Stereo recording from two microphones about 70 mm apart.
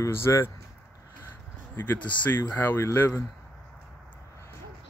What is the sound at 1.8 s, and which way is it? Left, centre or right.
Speech, left.